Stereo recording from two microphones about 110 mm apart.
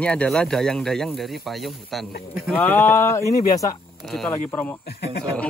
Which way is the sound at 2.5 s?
15° left (ahead or behind).